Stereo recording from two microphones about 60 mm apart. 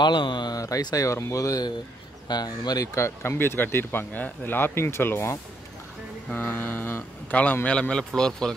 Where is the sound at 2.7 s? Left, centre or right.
Left.